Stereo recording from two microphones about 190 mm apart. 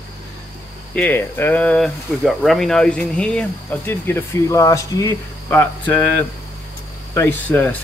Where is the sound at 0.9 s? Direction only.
10° left (ahead or behind).